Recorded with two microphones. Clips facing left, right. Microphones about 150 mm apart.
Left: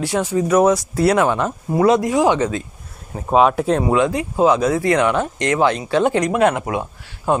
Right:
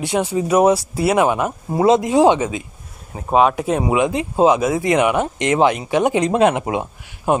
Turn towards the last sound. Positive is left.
turn(degrees=-20)  # may be behind; listen again after turning